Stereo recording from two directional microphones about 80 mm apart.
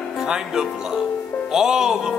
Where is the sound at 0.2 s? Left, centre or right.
Centre.